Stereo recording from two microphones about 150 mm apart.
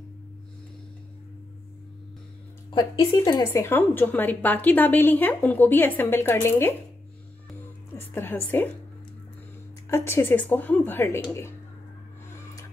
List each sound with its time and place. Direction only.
2.7 s a woman's voice: 35° left (ahead or behind)
3.7 s a woman's voice: 10° left (ahead or behind)
8.1 s a woman's voice: 15° left (ahead or behind)
9.8 s a woman's voice: 15° left (ahead or behind)